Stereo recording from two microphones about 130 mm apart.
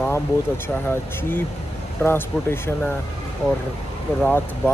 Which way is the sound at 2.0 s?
20° left (ahead or behind).